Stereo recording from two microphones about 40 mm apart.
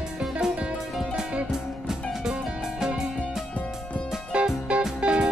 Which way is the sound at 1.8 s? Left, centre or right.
Centre.